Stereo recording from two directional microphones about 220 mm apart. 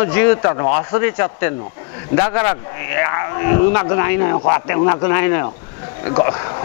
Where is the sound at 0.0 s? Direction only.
10° left (ahead or behind).